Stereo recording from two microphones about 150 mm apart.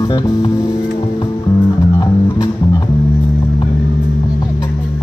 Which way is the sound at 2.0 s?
25° left (ahead or behind).